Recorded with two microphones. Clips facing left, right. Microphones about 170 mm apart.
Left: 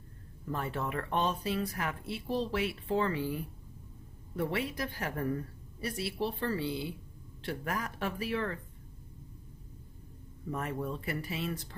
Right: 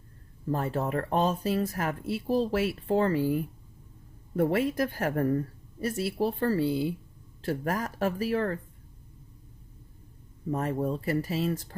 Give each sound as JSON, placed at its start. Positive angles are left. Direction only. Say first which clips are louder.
{"t": 0.5, "sound": "speech", "louder": "right 6 dB", "side_deg": -40}
{"t": 10.5, "sound": "speech", "louder": "right 7 dB", "side_deg": -35}